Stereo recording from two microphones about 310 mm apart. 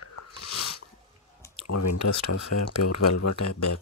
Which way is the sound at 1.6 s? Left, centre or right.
Left.